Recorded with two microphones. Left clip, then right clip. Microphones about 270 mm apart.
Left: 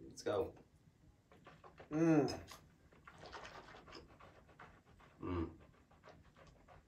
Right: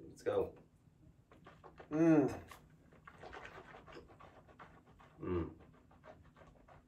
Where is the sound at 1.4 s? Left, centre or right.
Centre.